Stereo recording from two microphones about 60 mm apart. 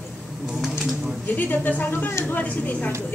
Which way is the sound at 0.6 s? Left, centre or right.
Centre.